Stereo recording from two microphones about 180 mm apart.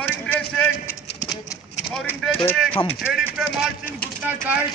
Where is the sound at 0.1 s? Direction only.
10° left (ahead or behind).